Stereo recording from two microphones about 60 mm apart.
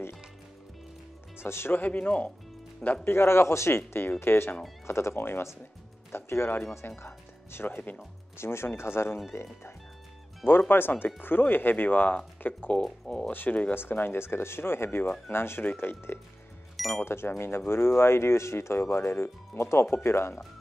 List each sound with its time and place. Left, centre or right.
1.4 s speech: left
1.8 s speech: left
3.1 s speech: left
7.0 s music: left
7.7 s speech: left
8.4 s speech: left
10.4 s speech: left
12.8 s speech: centre
13.3 s speech: left
13.7 s speech: left
16.7 s music: centre
17.0 s speech: left